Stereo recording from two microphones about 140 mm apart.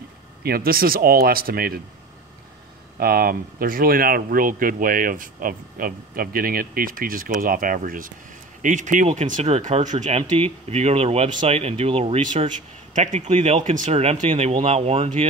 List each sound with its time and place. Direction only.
0.4 s speech: 90° right
3.0 s speech: 90° right
8.6 s speech: 65° right (ahead or behind)
10.3 s speech: 45° right (ahead or behind)
12.9 s speech: 55° right (ahead or behind)